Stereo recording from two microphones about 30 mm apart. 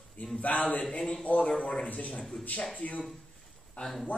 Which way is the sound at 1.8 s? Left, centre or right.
Left.